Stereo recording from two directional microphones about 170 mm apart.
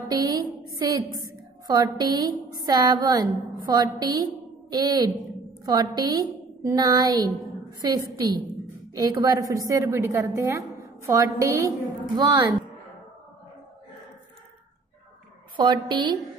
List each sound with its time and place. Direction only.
0.1 s a woman's voice: 20° right (ahead or behind)
15.5 s a woman's voice: 25° right (ahead or behind)